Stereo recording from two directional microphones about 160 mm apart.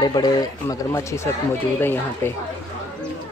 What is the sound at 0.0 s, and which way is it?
Speech, 25° left (ahead or behind).